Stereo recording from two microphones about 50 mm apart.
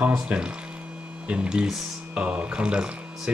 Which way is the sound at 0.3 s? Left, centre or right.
Right.